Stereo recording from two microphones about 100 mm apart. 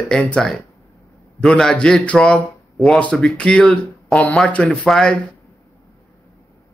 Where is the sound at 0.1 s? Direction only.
10° left (ahead or behind).